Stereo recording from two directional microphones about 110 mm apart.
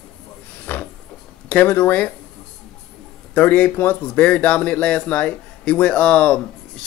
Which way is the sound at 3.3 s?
15° left (ahead or behind).